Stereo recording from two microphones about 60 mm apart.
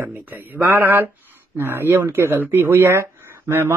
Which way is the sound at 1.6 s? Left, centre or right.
Right.